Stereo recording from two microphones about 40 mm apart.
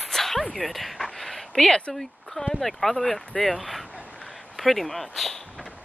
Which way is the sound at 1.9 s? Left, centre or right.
Centre.